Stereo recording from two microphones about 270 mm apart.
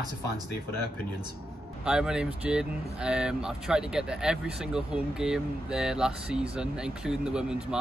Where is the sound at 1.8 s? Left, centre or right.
Centre.